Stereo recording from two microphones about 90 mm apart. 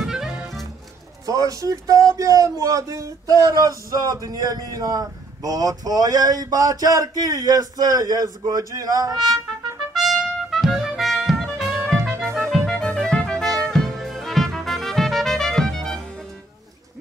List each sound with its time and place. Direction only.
0.0 s music: 5° right (ahead or behind)
1.2 s speech: 40° right (ahead or behind)
9.9 s trumpet: centre (ahead or behind)
12.4 s music: 5° left (ahead or behind)